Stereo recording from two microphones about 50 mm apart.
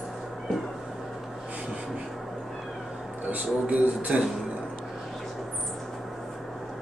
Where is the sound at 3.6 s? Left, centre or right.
Right.